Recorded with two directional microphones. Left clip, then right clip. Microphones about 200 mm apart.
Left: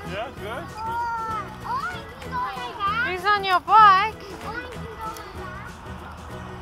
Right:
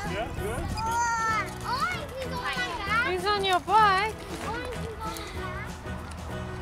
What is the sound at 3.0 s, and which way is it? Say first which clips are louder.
Speech: left 4 dB; centre (ahead or behind).